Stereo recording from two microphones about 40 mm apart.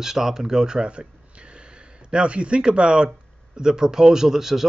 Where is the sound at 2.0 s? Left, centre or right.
Right.